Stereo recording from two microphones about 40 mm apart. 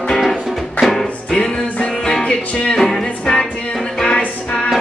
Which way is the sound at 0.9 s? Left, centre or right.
Centre.